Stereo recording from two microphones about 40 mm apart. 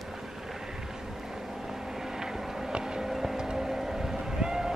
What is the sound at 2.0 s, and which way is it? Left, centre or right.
Vehicle, centre.